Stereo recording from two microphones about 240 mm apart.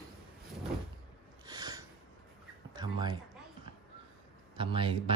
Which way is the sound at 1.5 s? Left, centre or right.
Centre.